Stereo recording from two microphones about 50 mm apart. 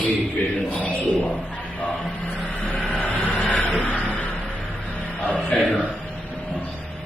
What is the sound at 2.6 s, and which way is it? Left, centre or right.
Vehicle, left.